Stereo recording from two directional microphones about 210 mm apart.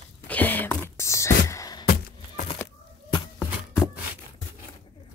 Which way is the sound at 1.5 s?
15° left (ahead or behind).